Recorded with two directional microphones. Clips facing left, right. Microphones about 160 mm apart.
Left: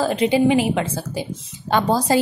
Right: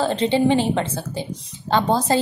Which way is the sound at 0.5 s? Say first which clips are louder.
Left 1 dB; 30° right (ahead or behind).